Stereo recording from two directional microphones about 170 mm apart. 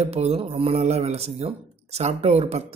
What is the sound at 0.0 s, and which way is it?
Speech, 40° right (ahead or behind).